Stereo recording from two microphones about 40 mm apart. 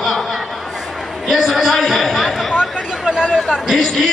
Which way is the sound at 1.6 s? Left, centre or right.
Centre.